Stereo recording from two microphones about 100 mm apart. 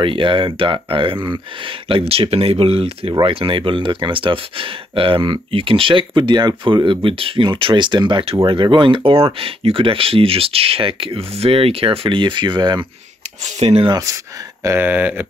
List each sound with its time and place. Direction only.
0.0 s speech: 60° right (ahead or behind)
1.9 s speech: 70° right (ahead or behind)
3.2 s speech: 60° right (ahead or behind)
13.6 s speech: 90° right
13.8 s speech: 40° right (ahead or behind)
14.6 s speech: 25° right (ahead or behind)